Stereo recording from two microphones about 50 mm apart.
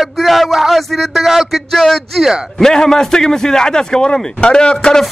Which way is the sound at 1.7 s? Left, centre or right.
Centre.